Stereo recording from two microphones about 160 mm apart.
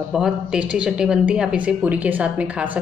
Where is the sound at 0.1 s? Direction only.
5° right (ahead or behind).